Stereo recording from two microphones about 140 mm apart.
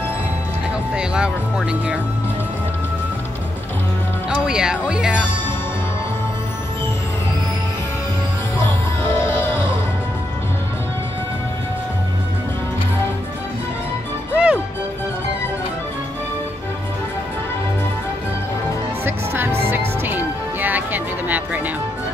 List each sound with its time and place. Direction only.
0.9 s speech: 5° right (ahead or behind)
4.3 s speech: 5° right (ahead or behind)
9.1 s music: 15° left (ahead or behind)
14.3 s music: 10° right (ahead or behind)
19.0 s music: 15° right (ahead or behind)